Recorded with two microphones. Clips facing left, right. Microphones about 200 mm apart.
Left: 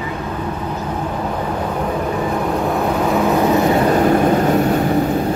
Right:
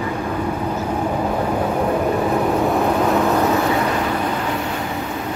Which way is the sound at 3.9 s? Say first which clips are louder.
Left 8 dB; 45° left (ahead or behind).